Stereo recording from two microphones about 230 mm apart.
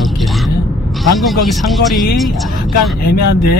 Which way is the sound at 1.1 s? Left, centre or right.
Centre.